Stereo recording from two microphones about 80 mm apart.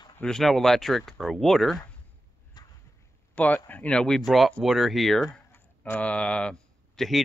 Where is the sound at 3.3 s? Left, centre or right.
Centre.